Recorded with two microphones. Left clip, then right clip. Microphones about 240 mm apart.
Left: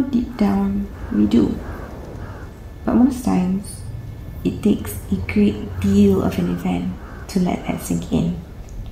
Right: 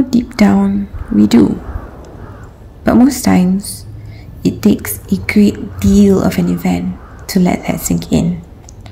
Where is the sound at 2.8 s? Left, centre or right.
Right.